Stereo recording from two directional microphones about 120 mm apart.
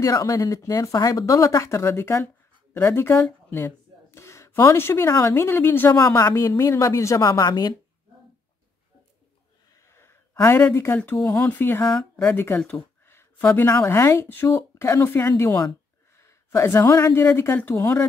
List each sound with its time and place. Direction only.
0.0 s speech: 30° left (ahead or behind)
5.9 s speech: 30° left (ahead or behind)
9.9 s a sound: 20° left (ahead or behind)
11.2 s speech: 20° left (ahead or behind)